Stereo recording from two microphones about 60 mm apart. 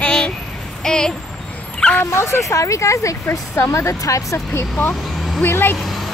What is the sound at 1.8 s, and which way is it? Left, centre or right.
Dog, centre.